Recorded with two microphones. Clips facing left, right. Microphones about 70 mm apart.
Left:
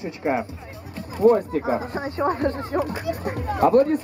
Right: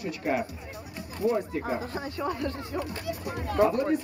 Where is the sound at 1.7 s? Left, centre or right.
Left.